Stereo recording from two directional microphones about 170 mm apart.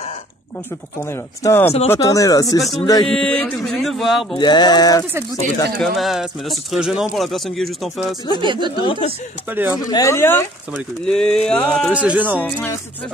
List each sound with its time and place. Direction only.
1.0 s speech: 15° left (ahead or behind)
3.1 s a sound: 5° left (ahead or behind)
4.4 s speech: 25° left (ahead or behind)
5.3 s a sound: centre (ahead or behind)
8.4 s speech: 25° right (ahead or behind)
8.7 s speech: 30° left (ahead or behind)
9.5 s speech: 10° right (ahead or behind)
9.8 s speech: 20° left (ahead or behind)
10.7 s a sound: 5° left (ahead or behind)
11.9 s speech: 10° right (ahead or behind)
12.4 s speech: 10° left (ahead or behind)